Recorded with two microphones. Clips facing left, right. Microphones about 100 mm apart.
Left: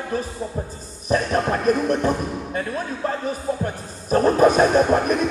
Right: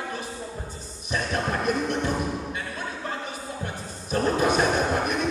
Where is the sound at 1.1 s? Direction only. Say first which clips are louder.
Left 7 dB; 40° left (ahead or behind).